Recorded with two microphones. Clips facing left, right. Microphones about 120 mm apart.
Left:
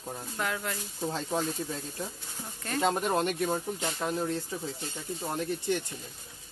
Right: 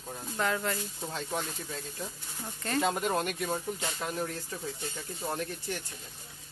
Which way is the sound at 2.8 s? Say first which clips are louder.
Left 2 dB; 25° left (ahead or behind).